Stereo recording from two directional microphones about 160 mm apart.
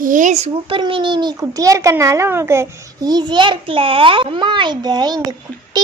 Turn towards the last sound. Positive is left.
turn(degrees=-25)  # may be behind; listen again after turning